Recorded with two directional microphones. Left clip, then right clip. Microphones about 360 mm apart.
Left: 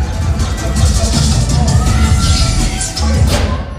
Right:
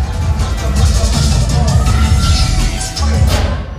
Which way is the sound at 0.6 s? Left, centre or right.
Right.